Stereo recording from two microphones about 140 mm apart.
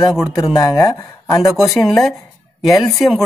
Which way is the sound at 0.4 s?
25° left (ahead or behind).